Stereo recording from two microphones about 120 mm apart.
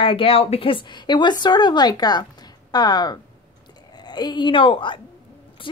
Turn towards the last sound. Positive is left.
turn(degrees=45)  # may be behind; listen again after turning